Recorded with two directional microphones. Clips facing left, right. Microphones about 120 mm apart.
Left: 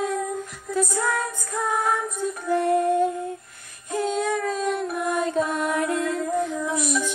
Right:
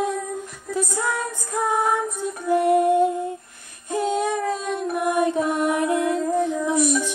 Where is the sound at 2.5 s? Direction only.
15° right (ahead or behind).